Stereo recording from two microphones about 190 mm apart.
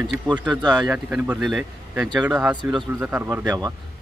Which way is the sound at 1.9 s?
20° right (ahead or behind).